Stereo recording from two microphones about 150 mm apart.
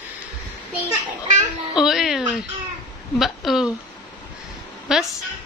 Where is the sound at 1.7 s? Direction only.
5° right (ahead or behind).